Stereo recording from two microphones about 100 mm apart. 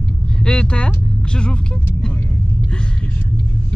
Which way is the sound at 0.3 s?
10° left (ahead or behind).